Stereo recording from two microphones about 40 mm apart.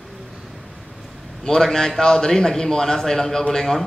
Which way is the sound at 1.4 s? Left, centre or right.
Centre.